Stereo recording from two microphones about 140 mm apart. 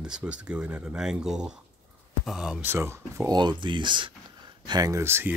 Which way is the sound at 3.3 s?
35° right (ahead or behind).